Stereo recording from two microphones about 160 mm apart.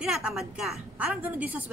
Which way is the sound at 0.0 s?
5° right (ahead or behind).